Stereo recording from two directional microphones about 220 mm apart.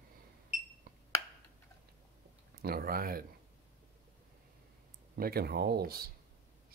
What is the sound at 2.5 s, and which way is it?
Speech, 40° right (ahead or behind).